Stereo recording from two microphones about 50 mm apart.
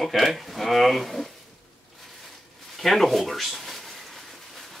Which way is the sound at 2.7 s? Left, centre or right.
Centre.